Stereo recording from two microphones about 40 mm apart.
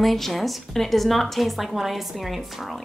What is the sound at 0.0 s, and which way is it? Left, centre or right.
Speech, centre.